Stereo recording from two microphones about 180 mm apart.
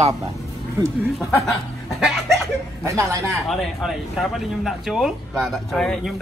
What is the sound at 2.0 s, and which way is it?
Chuckle, centre (ahead or behind).